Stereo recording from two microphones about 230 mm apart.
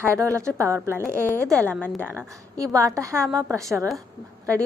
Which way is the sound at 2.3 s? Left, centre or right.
Centre.